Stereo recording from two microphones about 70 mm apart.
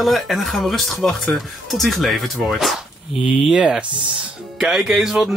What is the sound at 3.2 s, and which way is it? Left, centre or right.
Speech, centre.